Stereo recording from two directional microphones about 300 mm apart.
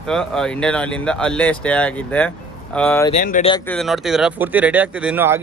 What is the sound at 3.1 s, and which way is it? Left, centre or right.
Speech, left.